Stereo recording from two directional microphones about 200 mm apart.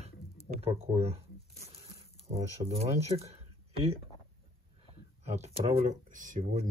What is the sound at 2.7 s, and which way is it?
Speech, 30° right (ahead or behind).